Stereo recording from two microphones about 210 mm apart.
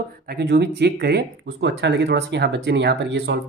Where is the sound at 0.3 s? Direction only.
50° right (ahead or behind).